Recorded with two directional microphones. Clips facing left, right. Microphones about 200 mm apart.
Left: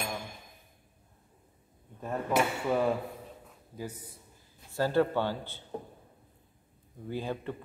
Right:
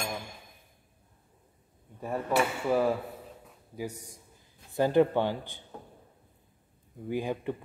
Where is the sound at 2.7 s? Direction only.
5° right (ahead or behind).